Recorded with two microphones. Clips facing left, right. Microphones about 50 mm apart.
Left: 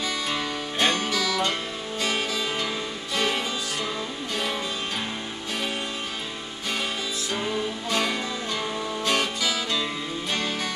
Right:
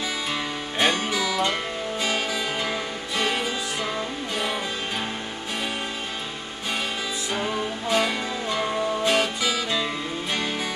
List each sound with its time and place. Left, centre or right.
0.3 s music: centre
3.2 s music: centre
7.3 s music: centre